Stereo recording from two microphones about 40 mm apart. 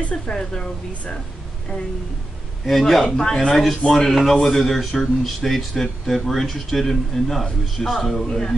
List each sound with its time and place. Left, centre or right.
0.1 s a woman's voice: centre
2.6 s a man's voice: centre